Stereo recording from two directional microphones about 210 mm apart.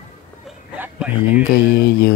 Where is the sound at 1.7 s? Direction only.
50° left (ahead or behind).